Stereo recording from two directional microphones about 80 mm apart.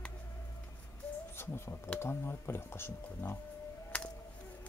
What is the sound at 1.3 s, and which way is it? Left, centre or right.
Speech, left.